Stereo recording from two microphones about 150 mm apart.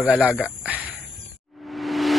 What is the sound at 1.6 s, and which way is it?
Music, centre (ahead or behind).